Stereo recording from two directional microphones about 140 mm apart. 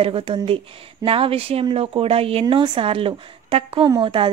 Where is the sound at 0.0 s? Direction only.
40° right (ahead or behind).